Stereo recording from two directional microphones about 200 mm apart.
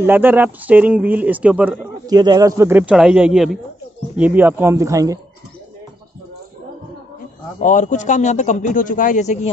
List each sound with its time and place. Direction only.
0.0 s speech: 10° right (ahead or behind)
2.0 s speech: 20° right (ahead or behind)
7.6 s a man's voice: 40° left (ahead or behind)